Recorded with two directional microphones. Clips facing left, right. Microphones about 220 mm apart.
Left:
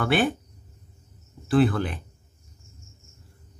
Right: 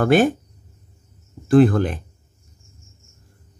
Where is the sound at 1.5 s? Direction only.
45° right (ahead or behind).